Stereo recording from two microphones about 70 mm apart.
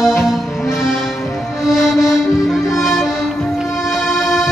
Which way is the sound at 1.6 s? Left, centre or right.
Centre.